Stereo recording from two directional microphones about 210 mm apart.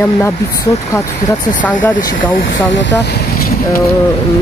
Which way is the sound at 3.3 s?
45° left (ahead or behind).